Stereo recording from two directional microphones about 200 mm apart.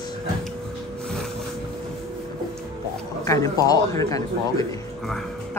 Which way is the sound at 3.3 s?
15° left (ahead or behind).